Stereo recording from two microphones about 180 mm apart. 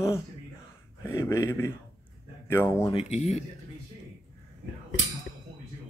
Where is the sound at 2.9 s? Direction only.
35° left (ahead or behind).